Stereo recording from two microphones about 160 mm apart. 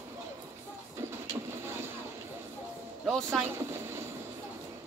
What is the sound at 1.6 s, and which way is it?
Vehicle, 15° right (ahead or behind).